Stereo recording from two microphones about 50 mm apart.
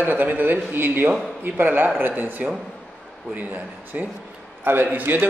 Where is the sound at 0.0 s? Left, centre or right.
Right.